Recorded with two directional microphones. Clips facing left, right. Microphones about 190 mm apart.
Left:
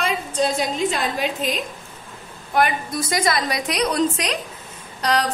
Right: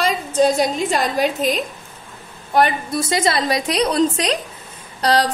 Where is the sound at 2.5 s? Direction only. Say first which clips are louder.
Right 3 dB; 30° right (ahead or behind).